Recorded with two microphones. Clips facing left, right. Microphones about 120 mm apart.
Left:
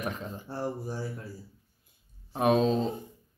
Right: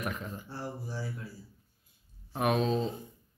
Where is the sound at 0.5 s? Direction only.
50° left (ahead or behind).